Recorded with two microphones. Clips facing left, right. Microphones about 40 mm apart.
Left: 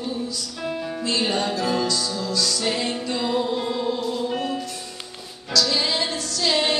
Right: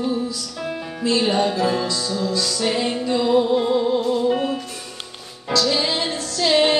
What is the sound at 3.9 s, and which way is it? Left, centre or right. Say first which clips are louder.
Music: right 7 dB; right.